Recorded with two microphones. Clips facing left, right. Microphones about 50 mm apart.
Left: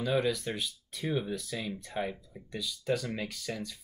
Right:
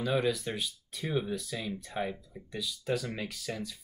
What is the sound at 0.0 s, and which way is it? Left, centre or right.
Speech, centre.